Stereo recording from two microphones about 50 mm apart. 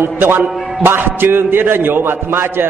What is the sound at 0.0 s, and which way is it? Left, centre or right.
A man's voice, right.